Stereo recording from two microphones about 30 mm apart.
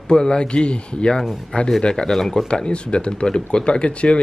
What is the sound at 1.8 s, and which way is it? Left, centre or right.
Speech, left.